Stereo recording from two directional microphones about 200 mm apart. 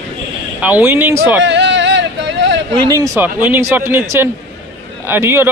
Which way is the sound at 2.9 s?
15° right (ahead or behind).